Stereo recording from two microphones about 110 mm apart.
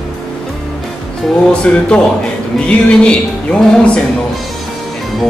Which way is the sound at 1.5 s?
10° left (ahead or behind).